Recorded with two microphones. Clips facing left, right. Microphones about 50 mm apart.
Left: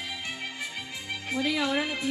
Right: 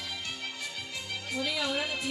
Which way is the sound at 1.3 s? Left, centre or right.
Left.